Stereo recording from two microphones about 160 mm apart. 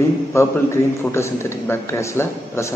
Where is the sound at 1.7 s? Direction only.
15° left (ahead or behind).